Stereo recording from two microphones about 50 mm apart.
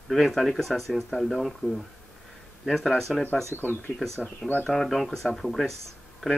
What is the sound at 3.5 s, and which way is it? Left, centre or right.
Speech, left.